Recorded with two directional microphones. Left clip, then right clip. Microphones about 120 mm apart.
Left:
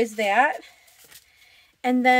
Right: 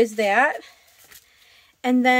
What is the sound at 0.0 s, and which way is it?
Speech, 35° right (ahead or behind).